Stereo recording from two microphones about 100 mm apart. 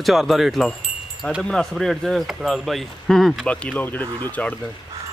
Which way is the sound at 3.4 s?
10° left (ahead or behind).